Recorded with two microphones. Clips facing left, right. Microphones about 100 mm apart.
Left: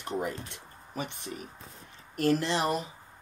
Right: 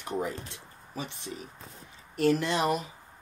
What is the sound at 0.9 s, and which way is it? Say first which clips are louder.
Speech: left 1 dB; 55° left (ahead or behind).